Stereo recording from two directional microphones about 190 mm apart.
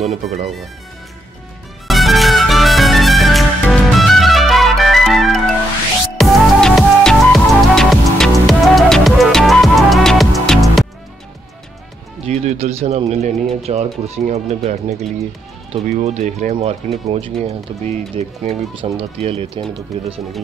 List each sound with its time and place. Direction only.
0.0 s speech: 35° right (ahead or behind)
1.9 s music: centre (ahead or behind)
12.3 s speech: 35° right (ahead or behind)
19.9 s speech: centre (ahead or behind)